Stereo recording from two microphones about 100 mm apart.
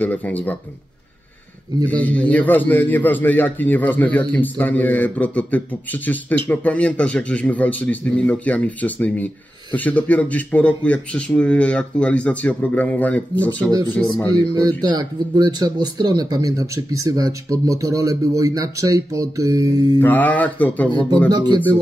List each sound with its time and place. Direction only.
0.0 s a man's voice: 15° left (ahead or behind)
1.9 s a man's voice: 15° left (ahead or behind)
14.3 s speech: 40° right (ahead or behind)
20.0 s a man's voice: 15° left (ahead or behind)
21.3 s speech: 45° right (ahead or behind)